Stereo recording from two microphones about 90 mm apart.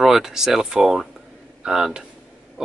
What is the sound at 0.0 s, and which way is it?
Speech, 5° right (ahead or behind).